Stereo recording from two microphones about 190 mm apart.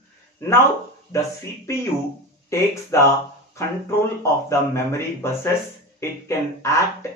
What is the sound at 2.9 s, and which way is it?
Speech, 15° left (ahead or behind).